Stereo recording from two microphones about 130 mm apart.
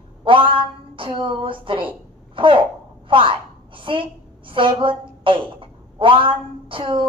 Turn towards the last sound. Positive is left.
turn(degrees=-40)  # may be behind; listen again after turning